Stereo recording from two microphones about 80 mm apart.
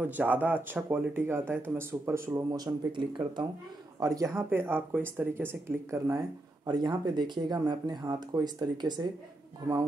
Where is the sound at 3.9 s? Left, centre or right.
Right.